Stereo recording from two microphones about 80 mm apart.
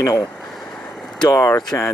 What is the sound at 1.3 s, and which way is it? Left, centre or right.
Speech, left.